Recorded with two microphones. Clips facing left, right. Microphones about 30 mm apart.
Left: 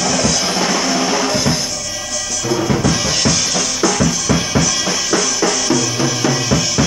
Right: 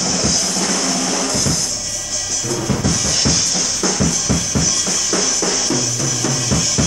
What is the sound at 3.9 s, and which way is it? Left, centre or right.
Drum kit, centre.